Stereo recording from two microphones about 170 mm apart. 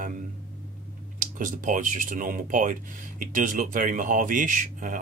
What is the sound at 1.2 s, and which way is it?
Speech, 50° right (ahead or behind).